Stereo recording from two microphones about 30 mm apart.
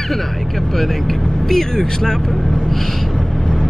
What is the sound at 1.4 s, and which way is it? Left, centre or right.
Speech, centre.